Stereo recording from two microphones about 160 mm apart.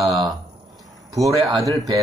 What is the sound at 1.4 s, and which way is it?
Speech, 30° right (ahead or behind).